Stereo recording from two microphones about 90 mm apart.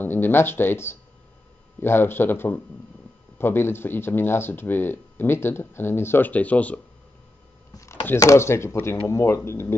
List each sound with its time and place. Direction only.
0.0 s speech: 25° left (ahead or behind)
7.7 s a sound: 30° left (ahead or behind)
8.2 s speech: 35° left (ahead or behind)